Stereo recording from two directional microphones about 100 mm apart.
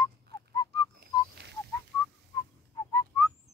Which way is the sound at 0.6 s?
50° left (ahead or behind).